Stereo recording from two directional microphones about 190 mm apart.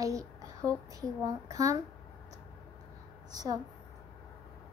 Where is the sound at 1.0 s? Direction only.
20° right (ahead or behind).